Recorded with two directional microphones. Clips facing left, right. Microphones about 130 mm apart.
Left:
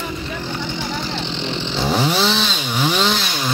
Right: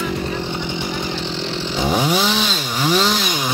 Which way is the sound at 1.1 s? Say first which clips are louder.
Even; 5° right (ahead or behind).